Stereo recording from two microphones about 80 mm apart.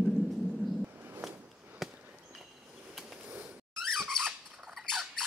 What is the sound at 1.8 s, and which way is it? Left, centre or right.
Fireworks, centre.